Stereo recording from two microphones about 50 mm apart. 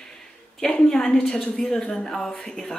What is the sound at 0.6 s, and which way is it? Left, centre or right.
Speech, centre.